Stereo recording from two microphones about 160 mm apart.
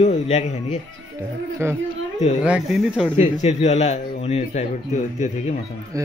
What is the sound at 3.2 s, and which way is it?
A man's voice, 40° left (ahead or behind).